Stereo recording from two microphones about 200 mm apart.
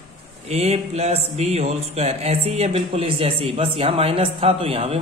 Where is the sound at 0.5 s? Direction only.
30° right (ahead or behind).